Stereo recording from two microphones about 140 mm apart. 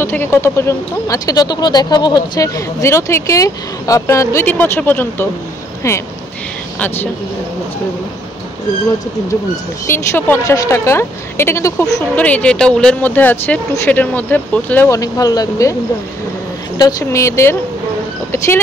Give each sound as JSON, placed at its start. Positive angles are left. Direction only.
{"t": 0.0, "sound": "speech", "side_deg": 15}
{"t": 9.8, "sound": "speech", "side_deg": 15}
{"t": 12.2, "sound": "speech", "side_deg": 10}
{"t": 14.9, "sound": "speech", "side_deg": 25}
{"t": 16.7, "sound": "speech", "side_deg": 25}